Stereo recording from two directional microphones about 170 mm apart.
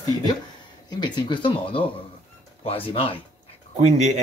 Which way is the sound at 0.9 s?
25° left (ahead or behind).